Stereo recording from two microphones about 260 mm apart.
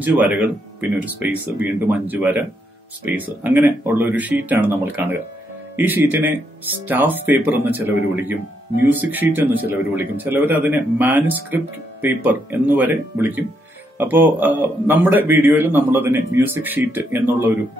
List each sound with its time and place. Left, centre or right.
0.0 s a man's voice: centre
8.9 s a man's voice: centre